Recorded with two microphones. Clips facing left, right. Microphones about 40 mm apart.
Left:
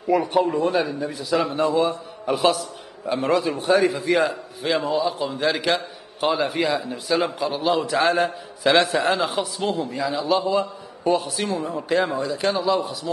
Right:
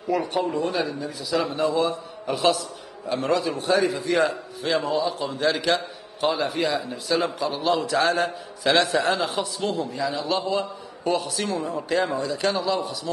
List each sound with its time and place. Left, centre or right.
0.1 s a man's voice: centre
0.7 s a man's voice: centre